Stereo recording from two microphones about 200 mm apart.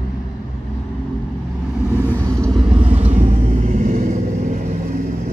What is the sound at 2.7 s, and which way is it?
Vehicle, 30° right (ahead or behind).